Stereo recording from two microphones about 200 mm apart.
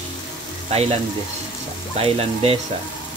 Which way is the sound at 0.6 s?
30° right (ahead or behind).